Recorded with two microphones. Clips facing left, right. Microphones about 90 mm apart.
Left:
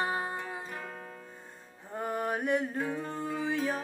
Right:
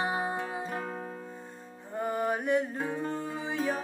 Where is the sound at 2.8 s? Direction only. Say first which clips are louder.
Right 1 dB; 20° right (ahead or behind).